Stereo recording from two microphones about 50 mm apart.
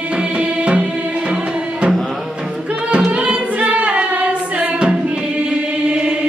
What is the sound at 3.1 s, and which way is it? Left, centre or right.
Singing, right.